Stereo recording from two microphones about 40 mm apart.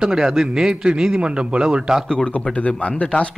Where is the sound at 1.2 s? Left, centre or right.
Right.